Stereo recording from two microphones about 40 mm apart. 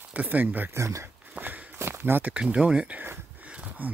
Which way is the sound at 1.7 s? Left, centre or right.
Right.